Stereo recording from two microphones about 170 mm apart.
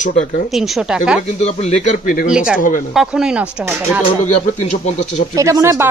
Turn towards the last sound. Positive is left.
turn(degrees=-15)  # may be behind; listen again after turning